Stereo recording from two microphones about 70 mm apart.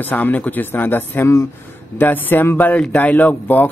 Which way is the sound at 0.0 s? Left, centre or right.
Left.